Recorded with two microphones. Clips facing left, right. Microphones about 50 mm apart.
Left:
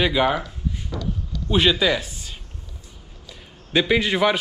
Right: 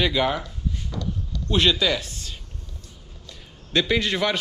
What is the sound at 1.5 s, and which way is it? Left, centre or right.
A man's voice, centre.